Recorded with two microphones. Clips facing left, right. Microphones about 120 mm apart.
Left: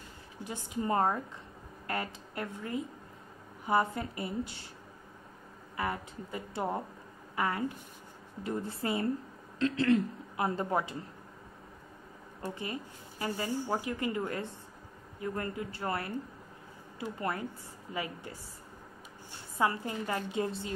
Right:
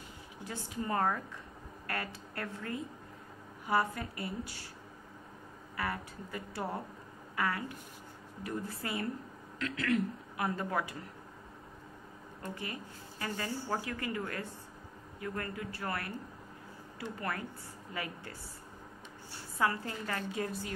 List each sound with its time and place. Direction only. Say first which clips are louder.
0.4 s speech: left 3 dB; 20° left (ahead or behind)
5.8 s a woman's voice: left 2 dB; 20° left (ahead or behind)
13.2 s speech: left 4 dB; 15° left (ahead or behind)
17.2 s speech: left 4 dB; 25° left (ahead or behind)
19.6 s speech: left 2 dB; 20° left (ahead or behind)